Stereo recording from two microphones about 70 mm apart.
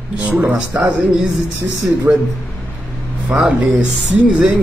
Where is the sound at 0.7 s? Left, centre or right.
Right.